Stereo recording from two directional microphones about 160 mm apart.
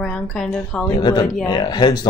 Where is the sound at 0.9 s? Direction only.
30° left (ahead or behind).